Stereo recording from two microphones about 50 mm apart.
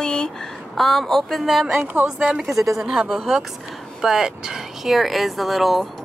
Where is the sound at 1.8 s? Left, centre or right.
Right.